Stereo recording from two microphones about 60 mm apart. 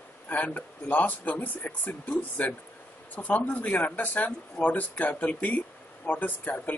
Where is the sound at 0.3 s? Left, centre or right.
Left.